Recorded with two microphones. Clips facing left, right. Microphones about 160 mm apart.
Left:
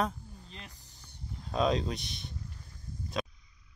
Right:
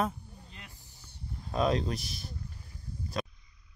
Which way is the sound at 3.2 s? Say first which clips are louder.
Even; centre (ahead or behind).